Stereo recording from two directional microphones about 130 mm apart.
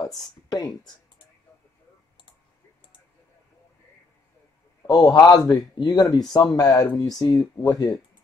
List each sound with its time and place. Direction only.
0.2 s speech: 30° left (ahead or behind)
4.8 s speech: 30° left (ahead or behind)